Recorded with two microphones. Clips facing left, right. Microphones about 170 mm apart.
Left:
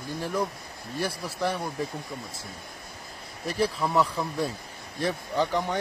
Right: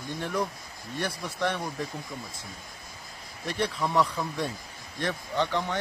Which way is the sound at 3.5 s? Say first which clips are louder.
Left 2 dB; 5° left (ahead or behind).